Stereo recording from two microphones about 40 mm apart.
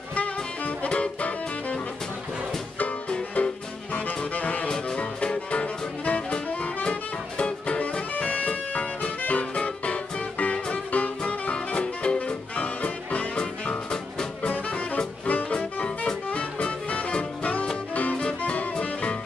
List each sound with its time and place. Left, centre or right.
0.1 s music: left
3.4 s music: left
3.9 s saxophone: left
4.6 s music: centre
8.1 s music: left
13.4 s music: left
14.4 s music: left